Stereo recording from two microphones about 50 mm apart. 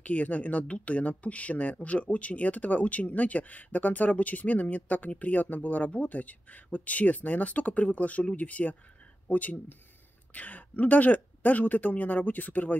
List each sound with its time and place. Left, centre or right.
0.0 s speech: left